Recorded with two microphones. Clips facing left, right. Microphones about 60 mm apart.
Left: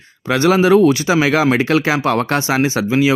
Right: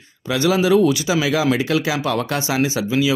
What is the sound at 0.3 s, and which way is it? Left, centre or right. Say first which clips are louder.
Speech: left 4 dB; left.